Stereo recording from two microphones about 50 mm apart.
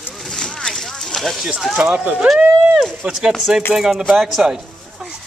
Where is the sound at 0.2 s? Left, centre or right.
Centre.